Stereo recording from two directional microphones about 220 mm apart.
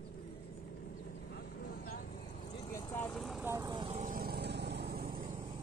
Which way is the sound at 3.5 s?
15° right (ahead or behind).